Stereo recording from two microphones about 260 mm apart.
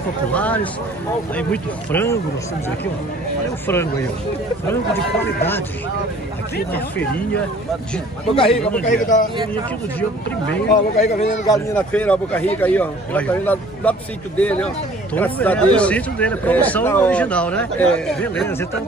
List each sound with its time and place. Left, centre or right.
0.3 s speech: centre
3.7 s speech: centre
8.3 s a man's voice: left
10.5 s a man's voice: left
11.5 s speech: centre